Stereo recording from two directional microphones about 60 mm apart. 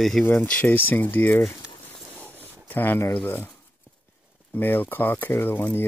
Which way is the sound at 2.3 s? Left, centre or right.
Right.